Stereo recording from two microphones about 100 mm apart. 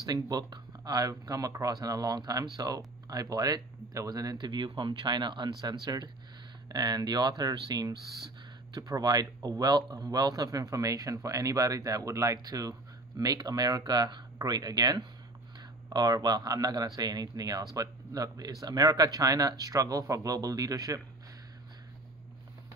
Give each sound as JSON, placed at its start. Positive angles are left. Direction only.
{"t": 0.0, "sound": "speech", "side_deg": -40}